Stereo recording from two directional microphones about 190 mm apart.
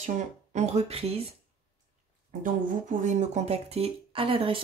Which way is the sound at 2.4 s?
40° right (ahead or behind).